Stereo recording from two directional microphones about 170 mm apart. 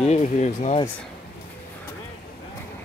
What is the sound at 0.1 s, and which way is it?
Speech, 40° left (ahead or behind).